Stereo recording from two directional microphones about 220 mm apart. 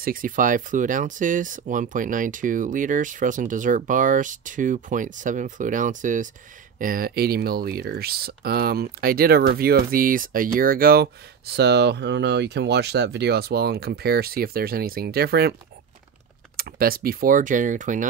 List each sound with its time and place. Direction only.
0.0 s speech: 40° right (ahead or behind)
16.5 s speech: 40° right (ahead or behind)